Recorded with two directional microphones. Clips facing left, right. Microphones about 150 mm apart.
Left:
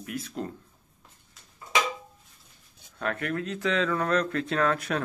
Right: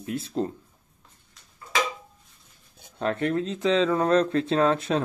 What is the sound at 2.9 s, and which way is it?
Speech, 25° right (ahead or behind).